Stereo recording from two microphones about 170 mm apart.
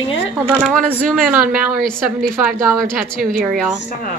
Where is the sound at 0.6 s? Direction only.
5° right (ahead or behind).